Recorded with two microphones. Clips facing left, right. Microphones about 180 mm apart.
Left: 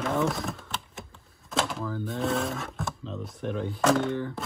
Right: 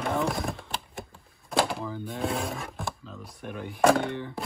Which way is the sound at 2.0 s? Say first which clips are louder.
Left 4 dB; centre (ahead or behind).